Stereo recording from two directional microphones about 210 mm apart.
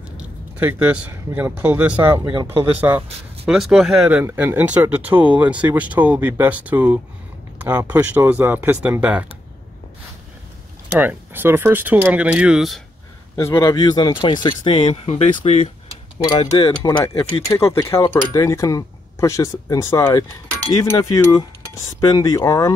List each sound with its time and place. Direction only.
0.2 s speech: 10° right (ahead or behind)
2.3 s speech: 20° right (ahead or behind)
11.0 s speech: 10° right (ahead or behind)
13.4 s speech: 15° left (ahead or behind)